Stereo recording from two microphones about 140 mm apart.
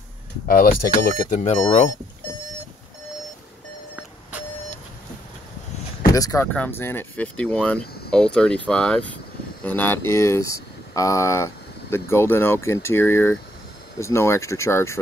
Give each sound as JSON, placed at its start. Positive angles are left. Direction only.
{"t": 0.5, "sound": "speech", "side_deg": 90}
{"t": 1.4, "sound": "speech", "side_deg": 50}
{"t": 6.1, "sound": "speech", "side_deg": 25}
{"t": 6.5, "sound": "speech", "side_deg": 15}